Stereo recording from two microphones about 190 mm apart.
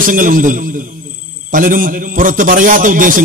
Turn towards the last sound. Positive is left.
turn(degrees=-45)  # may be behind; listen again after turning